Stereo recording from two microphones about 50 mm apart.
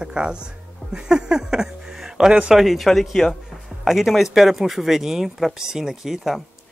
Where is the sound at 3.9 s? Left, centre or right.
Centre.